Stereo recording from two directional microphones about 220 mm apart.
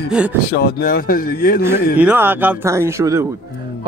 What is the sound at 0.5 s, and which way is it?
Speech, 45° left (ahead or behind).